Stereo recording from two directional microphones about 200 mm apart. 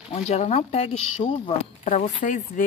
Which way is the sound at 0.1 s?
35° left (ahead or behind).